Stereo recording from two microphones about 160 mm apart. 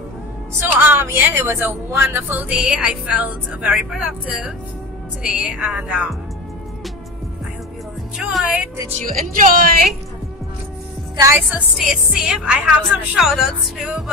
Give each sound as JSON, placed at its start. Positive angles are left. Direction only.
{"t": 0.6, "sound": "a woman's voice", "side_deg": -15}
{"t": 8.3, "sound": "speech", "side_deg": 0}
{"t": 8.9, "sound": "speech", "side_deg": -55}
{"t": 11.5, "sound": "speech", "side_deg": -5}